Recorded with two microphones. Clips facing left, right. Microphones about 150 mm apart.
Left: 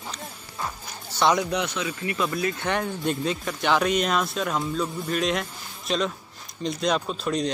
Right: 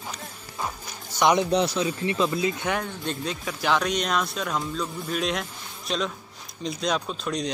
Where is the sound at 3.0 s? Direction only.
5° left (ahead or behind).